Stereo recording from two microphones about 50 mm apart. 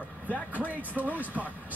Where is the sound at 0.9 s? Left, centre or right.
Right.